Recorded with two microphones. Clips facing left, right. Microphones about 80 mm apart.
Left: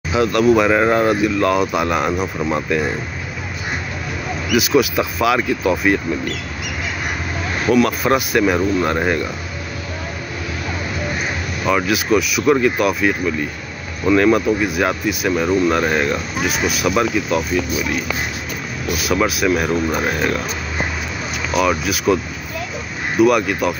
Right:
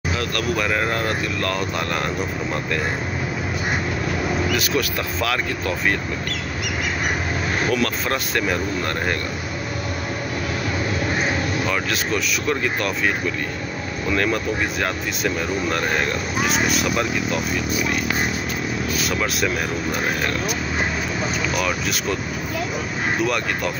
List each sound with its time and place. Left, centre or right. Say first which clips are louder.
0.1 s speech: left 11 dB; centre
4.5 s speech: left 6 dB; centre
7.7 s speech: left 7 dB; centre
11.6 s speech: left 5 dB; centre
18.9 s speech: left 9 dB; centre
21.5 s speech: left 6 dB; centre
23.2 s speech: left 13 dB; centre